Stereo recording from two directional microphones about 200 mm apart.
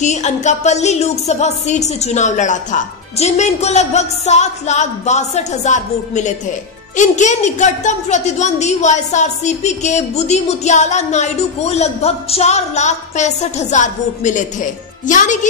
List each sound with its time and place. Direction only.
0.0 s a woman's voice: 35° left (ahead or behind)